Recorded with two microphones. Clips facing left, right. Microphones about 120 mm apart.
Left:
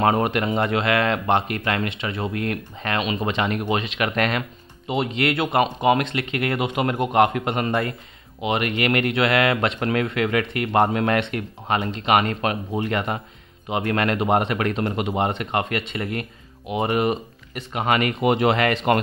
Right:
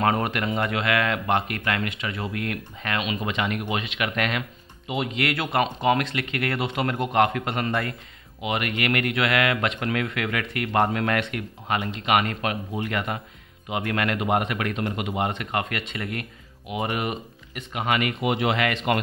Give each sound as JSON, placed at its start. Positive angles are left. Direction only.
{"t": 0.0, "sound": "speech", "side_deg": 25}